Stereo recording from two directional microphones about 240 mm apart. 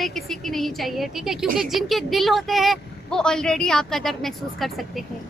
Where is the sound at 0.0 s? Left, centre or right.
Centre.